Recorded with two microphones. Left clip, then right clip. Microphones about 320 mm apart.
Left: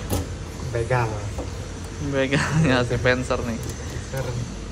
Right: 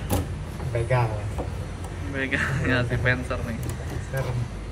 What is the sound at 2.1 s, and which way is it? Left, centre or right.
A man's voice, centre.